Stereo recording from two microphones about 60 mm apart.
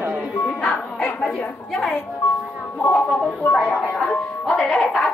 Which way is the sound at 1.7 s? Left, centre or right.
Centre.